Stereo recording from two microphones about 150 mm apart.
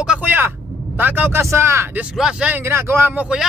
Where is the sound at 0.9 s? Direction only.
10° right (ahead or behind).